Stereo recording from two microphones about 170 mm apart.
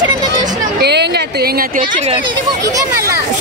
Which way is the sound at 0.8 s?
75° right (ahead or behind).